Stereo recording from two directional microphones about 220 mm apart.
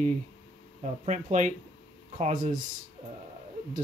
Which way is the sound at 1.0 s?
35° right (ahead or behind).